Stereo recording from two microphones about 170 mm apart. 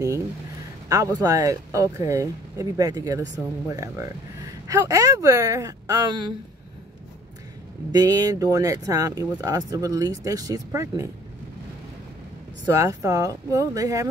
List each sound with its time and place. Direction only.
0.8 s speech: 20° right (ahead or behind)
7.9 s speech: 20° right (ahead or behind)
12.6 s speech: 20° right (ahead or behind)